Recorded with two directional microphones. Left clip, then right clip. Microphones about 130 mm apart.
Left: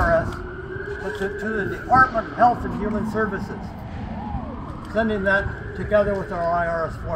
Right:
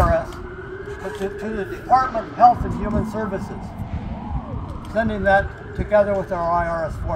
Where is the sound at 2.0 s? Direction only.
45° right (ahead or behind).